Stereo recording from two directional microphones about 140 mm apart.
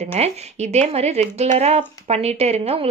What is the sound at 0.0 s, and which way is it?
Speech, 50° right (ahead or behind).